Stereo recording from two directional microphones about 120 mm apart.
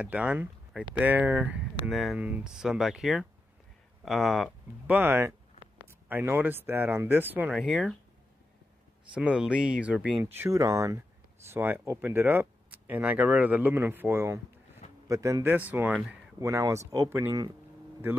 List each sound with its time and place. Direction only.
0.0 s speech: 15° right (ahead or behind)
2.1 s speech: 10° right (ahead or behind)
4.8 s speech: 15° right (ahead or behind)
7.5 s speech: centre (ahead or behind)
9.1 s speech: 10° right (ahead or behind)
10.3 s speech: 20° right (ahead or behind)
15.7 s speech: 15° right (ahead or behind)
16.3 s speech: 25° right (ahead or behind)